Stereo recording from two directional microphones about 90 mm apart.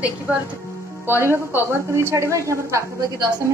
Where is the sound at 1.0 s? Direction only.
25° right (ahead or behind).